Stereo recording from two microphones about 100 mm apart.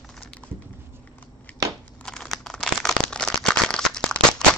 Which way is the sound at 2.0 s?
5° left (ahead or behind).